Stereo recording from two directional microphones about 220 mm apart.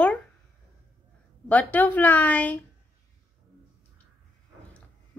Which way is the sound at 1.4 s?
5° left (ahead or behind).